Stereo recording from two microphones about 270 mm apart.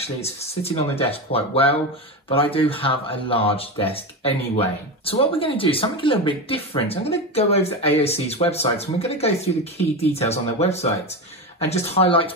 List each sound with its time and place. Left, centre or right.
0.0 s speech: left